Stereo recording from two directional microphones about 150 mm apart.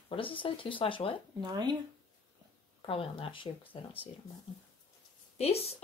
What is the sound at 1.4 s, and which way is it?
Speech, 30° right (ahead or behind).